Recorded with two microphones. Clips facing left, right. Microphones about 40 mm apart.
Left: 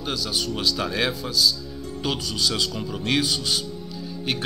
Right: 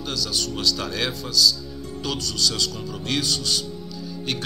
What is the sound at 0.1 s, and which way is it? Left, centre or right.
Speech, centre.